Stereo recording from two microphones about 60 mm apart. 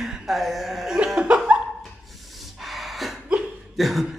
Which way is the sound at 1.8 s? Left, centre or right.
Centre.